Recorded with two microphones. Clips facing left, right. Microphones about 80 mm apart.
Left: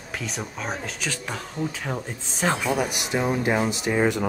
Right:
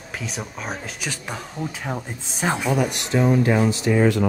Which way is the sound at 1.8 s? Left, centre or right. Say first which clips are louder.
Right 1 dB; centre.